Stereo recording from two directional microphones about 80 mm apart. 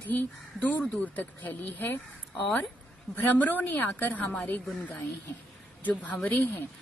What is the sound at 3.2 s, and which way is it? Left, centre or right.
A woman's voice, left.